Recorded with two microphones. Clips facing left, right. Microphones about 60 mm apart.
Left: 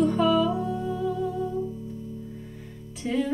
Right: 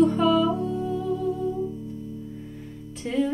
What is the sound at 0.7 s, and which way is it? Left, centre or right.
Music, left.